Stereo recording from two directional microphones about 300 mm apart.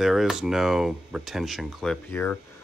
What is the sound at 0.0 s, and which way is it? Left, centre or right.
Speech, centre.